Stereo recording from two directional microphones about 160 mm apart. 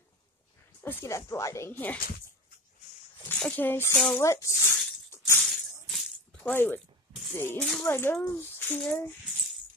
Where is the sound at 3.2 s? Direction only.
10° left (ahead or behind).